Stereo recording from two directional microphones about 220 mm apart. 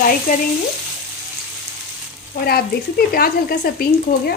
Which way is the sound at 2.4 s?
45° left (ahead or behind).